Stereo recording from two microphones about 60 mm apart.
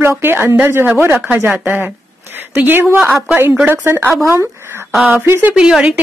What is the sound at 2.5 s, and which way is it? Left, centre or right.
Speech, right.